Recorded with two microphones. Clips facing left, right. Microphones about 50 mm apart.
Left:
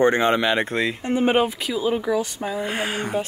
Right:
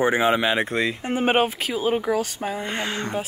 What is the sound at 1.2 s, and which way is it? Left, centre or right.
Speech, right.